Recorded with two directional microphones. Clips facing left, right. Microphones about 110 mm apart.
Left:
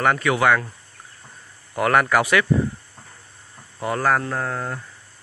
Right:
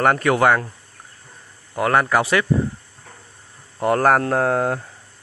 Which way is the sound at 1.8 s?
25° right (ahead or behind).